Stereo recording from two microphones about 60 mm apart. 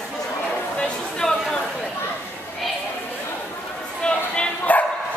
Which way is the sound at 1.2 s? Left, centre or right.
Centre.